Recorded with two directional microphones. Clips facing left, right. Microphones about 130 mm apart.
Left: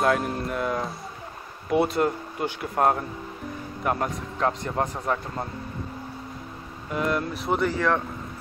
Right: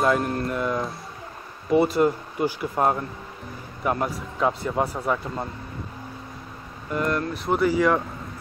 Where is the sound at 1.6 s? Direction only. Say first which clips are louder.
Right 3 dB; centre (ahead or behind).